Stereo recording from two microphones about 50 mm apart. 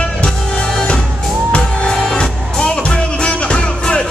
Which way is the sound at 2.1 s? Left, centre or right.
Centre.